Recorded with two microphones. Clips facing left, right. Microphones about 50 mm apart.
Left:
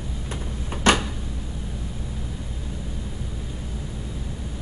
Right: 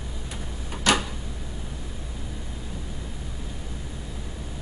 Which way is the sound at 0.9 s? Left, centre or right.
Left.